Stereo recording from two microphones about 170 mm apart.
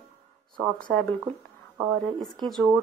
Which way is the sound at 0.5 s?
5° left (ahead or behind).